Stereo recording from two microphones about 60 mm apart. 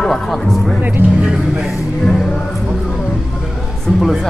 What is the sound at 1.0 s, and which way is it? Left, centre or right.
Speech, right.